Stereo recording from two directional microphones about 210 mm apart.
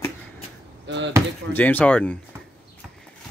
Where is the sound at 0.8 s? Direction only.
60° right (ahead or behind).